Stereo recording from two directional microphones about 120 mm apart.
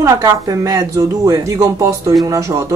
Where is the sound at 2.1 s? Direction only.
30° right (ahead or behind).